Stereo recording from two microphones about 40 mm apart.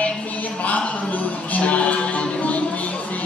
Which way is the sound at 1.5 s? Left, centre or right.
Left.